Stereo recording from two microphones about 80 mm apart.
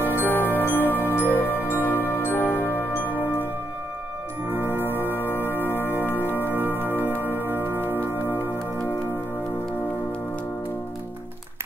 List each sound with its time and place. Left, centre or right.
0.0 s music: left
4.6 s music: left
7.5 s music: right
7.8 s music: left